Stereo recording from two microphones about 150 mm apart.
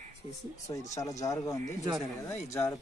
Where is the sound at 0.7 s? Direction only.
25° left (ahead or behind).